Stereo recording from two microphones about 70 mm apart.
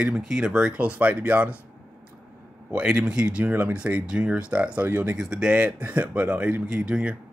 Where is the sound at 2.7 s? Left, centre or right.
Centre.